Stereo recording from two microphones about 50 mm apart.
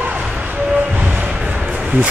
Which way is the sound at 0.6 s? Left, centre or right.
Right.